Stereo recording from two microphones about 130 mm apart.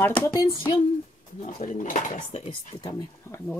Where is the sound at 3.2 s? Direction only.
15° left (ahead or behind).